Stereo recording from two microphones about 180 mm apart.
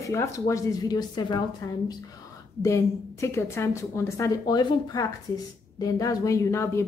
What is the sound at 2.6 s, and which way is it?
A woman's voice, 15° left (ahead or behind).